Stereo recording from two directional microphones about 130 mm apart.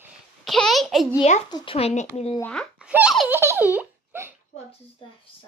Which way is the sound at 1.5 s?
40° left (ahead or behind).